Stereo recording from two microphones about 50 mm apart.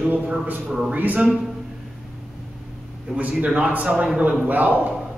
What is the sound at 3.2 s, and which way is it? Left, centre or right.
A man's voice, right.